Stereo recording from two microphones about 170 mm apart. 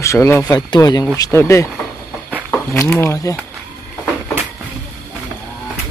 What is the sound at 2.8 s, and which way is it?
Speech, 15° left (ahead or behind).